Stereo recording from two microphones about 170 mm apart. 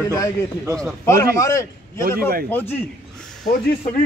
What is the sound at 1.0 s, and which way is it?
A man's voice, 15° left (ahead or behind).